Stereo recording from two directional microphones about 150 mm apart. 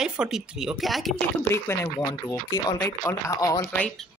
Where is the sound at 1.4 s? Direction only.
15° left (ahead or behind).